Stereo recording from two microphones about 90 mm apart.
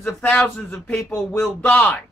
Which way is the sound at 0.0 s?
10° left (ahead or behind).